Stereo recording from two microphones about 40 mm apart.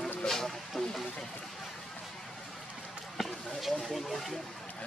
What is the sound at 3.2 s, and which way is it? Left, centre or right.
Speech, centre.